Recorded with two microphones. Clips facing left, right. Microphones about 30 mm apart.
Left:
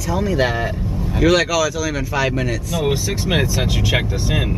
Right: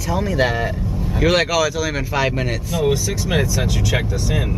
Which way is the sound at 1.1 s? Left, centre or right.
Centre.